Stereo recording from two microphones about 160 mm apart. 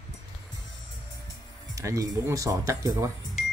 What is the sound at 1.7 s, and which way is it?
Speech, 20° right (ahead or behind).